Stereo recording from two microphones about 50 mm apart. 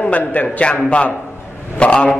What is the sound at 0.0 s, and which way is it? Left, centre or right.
Speech, left.